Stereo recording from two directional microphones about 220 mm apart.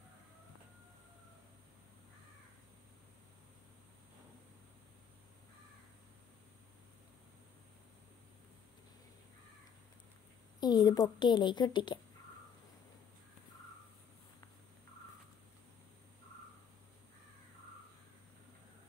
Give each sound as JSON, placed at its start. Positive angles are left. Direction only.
{"t": 10.6, "sound": "a woman's voice", "side_deg": 20}